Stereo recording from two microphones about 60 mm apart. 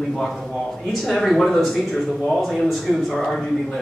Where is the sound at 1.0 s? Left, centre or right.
Centre.